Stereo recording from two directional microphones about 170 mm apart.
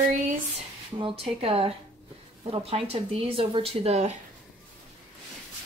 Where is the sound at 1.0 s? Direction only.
35° right (ahead or behind).